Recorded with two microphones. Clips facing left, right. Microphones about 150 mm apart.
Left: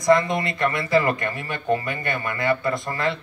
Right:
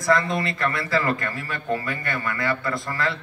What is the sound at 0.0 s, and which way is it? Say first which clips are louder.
Speech: left 3 dB; 20° left (ahead or behind).